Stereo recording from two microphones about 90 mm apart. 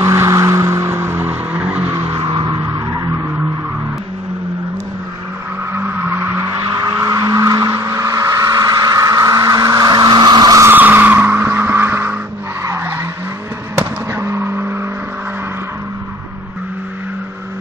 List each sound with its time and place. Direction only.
0.0 s vehicle: 35° right (ahead or behind); by 1.9 s 15° right (ahead or behind)
2.1 s vehicle: 65° right (ahead or behind)
5.7 s vehicle: 20° right (ahead or behind)
7.0 s vehicle: 40° right (ahead or behind)
10.6 s vehicle: 20° right (ahead or behind)
13.7 s car: 30° right (ahead or behind)